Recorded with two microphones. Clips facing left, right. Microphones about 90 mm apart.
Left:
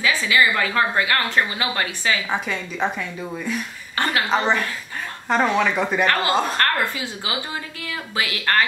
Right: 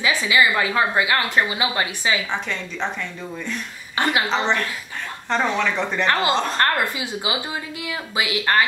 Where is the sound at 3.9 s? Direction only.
15° right (ahead or behind).